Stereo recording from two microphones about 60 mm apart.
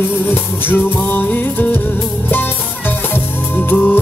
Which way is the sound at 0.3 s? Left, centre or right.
Left.